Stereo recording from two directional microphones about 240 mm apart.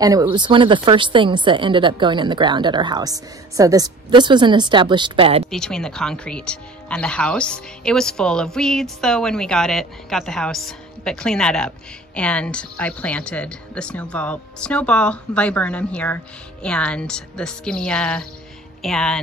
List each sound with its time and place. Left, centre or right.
0.0 s speech: centre
5.5 s speech: centre